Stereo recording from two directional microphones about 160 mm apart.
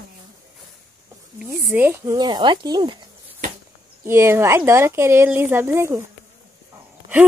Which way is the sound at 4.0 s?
15° right (ahead or behind).